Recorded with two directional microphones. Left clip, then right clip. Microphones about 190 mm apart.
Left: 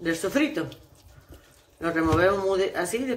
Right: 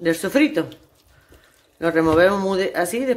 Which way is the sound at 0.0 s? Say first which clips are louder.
Right 6 dB; 45° right (ahead or behind).